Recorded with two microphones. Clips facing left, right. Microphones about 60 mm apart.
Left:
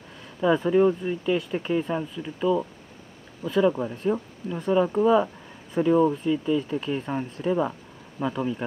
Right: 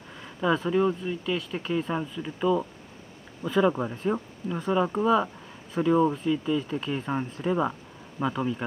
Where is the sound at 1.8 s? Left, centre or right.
Centre.